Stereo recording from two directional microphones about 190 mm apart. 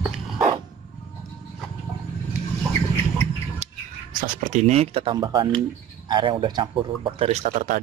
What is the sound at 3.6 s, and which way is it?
Squawk, 35° right (ahead or behind).